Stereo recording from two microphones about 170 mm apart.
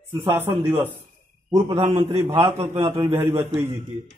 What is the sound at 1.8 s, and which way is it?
Speech, 35° right (ahead or behind).